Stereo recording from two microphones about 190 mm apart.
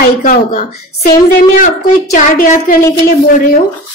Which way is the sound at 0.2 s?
45° left (ahead or behind).